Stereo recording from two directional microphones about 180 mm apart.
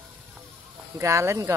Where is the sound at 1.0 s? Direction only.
15° right (ahead or behind).